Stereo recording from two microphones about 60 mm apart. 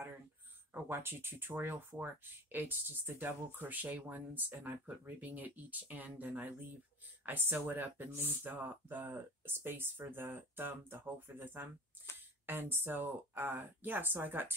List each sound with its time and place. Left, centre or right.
0.8 s speech: right